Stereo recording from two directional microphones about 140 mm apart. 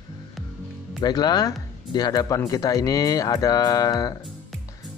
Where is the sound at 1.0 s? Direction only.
30° left (ahead or behind).